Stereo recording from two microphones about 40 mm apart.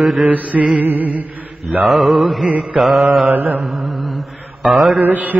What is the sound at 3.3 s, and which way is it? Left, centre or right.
Mantra, right.